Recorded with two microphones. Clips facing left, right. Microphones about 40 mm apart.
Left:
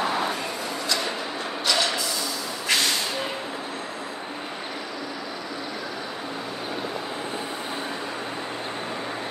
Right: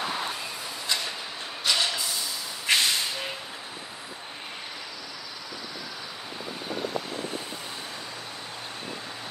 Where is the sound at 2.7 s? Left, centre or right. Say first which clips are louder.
Even; right.